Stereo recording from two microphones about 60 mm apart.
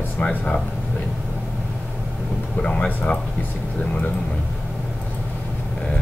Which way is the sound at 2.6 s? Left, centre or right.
Centre.